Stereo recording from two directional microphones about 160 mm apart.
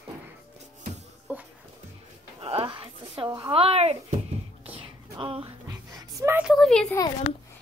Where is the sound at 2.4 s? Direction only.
35° right (ahead or behind).